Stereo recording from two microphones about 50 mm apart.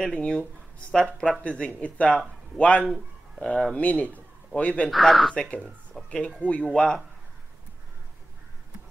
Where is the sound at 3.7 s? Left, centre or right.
Left.